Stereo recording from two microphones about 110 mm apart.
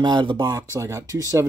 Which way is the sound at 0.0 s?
45° right (ahead or behind).